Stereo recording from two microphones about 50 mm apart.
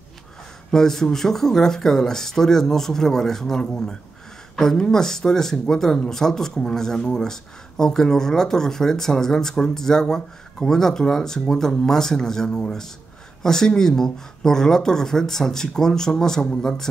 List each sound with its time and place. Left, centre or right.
0.7 s speech: centre